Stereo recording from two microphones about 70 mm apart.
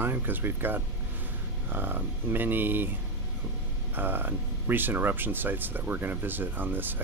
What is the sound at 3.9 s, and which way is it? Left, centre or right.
Speech, right.